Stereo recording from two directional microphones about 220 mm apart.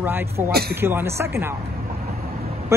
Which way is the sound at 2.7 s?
10° right (ahead or behind).